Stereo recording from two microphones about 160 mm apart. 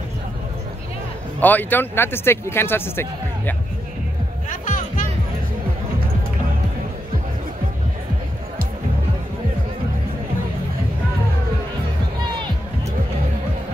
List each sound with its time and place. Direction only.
1.4 s speech: 10° left (ahead or behind)
4.5 s music: 55° left (ahead or behind)